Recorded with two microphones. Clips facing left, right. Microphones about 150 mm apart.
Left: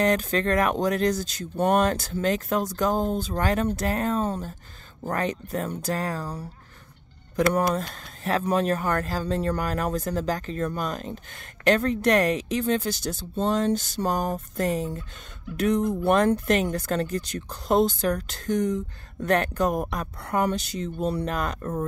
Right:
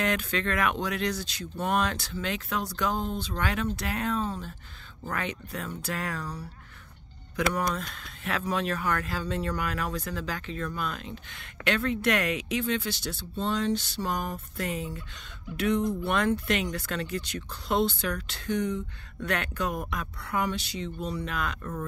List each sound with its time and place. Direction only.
0.0 s speech: 40° left (ahead or behind)
7.9 s speech: 40° left (ahead or behind)